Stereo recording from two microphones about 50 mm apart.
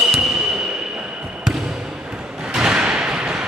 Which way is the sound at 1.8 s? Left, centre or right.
Centre.